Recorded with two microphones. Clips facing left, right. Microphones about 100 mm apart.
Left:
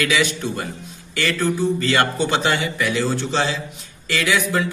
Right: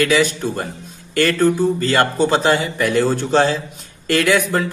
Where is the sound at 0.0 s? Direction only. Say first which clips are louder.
Right 4 dB; 40° right (ahead or behind).